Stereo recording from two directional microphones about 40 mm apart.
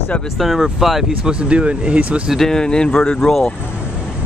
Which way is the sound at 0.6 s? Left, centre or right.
Centre.